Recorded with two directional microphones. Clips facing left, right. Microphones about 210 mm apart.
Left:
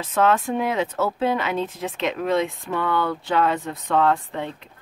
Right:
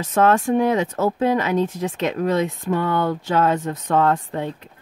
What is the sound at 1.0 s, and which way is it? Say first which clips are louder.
Speech: right 4 dB; 45° right (ahead or behind).